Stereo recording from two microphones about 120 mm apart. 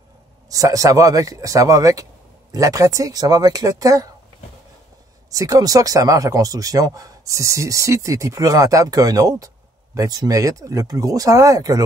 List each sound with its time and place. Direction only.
0.5 s speech: 30° right (ahead or behind)
5.3 s speech: 30° right (ahead or behind)